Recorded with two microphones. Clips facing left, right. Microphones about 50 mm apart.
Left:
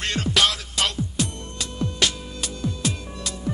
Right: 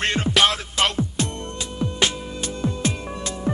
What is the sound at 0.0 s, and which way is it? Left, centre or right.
Music, right.